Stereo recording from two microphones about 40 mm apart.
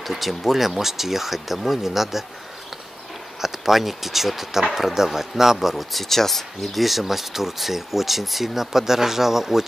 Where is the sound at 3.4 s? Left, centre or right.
Centre.